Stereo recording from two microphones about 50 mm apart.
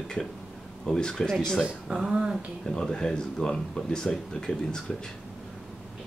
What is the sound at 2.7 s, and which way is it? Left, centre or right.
Speech, centre.